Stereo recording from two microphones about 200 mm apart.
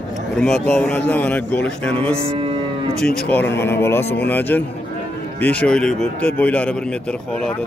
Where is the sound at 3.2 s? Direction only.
10° left (ahead or behind).